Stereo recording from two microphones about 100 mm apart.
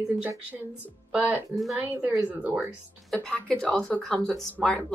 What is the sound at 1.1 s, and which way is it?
Speech, 15° right (ahead or behind).